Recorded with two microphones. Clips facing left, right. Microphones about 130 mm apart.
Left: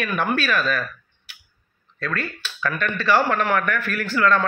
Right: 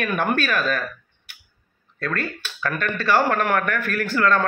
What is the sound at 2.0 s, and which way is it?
Speech, 50° right (ahead or behind).